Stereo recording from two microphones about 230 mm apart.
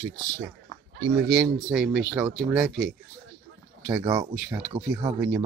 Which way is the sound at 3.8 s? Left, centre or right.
Centre.